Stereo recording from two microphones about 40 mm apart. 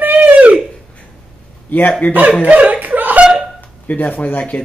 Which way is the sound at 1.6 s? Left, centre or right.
Left.